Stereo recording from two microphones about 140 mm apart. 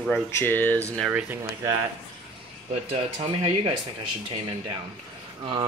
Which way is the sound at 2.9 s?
45° right (ahead or behind).